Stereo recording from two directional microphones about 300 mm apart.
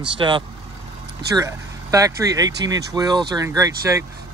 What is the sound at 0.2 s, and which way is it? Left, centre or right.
Speech, centre.